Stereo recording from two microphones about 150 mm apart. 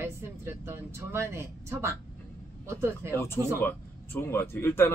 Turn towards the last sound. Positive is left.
turn(degrees=15)  # may be behind; listen again after turning